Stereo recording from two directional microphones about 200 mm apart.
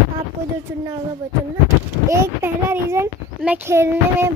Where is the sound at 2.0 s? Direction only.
15° right (ahead or behind).